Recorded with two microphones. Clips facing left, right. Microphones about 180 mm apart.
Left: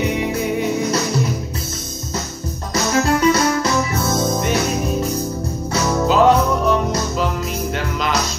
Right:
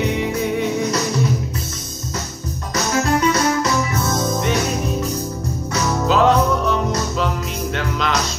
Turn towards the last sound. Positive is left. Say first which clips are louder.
# left 2 dB
turn(degrees=5)  # may be behind; listen again after turning